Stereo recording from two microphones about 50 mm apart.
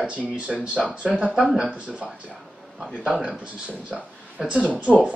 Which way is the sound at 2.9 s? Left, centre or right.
Right.